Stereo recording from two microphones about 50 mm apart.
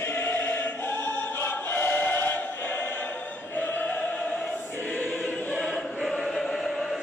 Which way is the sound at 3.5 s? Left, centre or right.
Left.